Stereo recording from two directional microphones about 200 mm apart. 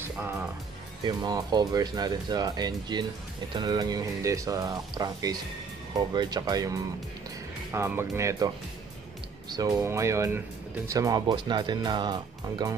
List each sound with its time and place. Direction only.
1.0 s speech: 20° right (ahead or behind)
9.5 s speech: 15° right (ahead or behind)